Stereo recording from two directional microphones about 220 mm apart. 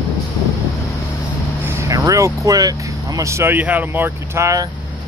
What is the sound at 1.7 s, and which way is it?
Speech, 15° right (ahead or behind).